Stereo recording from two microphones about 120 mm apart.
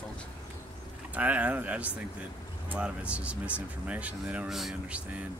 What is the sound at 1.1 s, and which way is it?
Speech, 15° right (ahead or behind).